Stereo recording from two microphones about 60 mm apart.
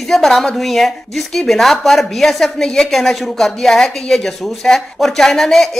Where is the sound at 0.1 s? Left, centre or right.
Centre.